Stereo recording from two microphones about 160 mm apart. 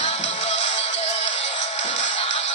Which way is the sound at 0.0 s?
50° left (ahead or behind).